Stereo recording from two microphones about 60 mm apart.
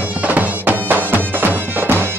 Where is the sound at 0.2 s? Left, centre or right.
Right.